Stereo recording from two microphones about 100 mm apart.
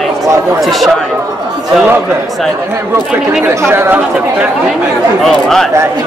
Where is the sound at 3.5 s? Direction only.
25° right (ahead or behind).